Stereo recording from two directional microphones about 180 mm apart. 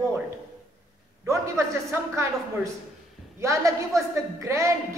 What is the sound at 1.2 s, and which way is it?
A man's voice, 15° right (ahead or behind).